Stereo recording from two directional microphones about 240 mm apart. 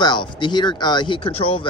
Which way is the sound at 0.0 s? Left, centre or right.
Centre.